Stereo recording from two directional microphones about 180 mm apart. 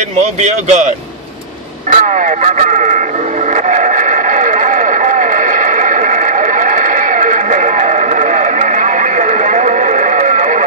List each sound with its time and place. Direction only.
0.2 s speech: 40° right (ahead or behind)
1.9 s speech: 45° right (ahead or behind)
3.6 s vehicle: 45° right (ahead or behind)